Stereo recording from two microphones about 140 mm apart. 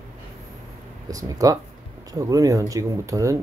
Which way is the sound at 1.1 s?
25° right (ahead or behind).